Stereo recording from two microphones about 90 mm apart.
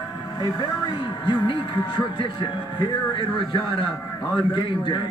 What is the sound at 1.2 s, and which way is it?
Speech, 60° left (ahead or behind).